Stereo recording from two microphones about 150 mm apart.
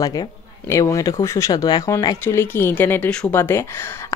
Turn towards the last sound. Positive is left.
turn(degrees=15)  # may be behind; listen again after turning